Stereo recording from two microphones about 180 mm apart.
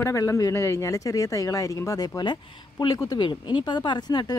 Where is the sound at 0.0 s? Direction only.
15° left (ahead or behind).